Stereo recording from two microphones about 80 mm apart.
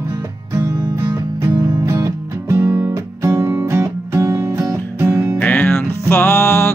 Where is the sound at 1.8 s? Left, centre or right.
Right.